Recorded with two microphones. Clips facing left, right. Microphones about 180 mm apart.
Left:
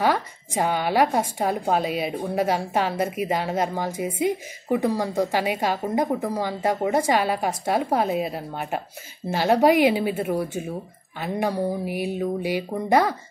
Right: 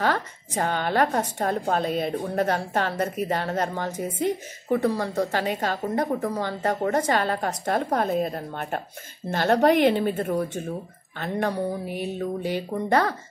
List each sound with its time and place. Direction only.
0.0 s a woman's voice: 10° left (ahead or behind)